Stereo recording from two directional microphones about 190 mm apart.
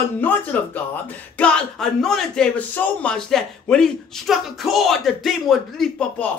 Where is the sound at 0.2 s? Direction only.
10° left (ahead or behind).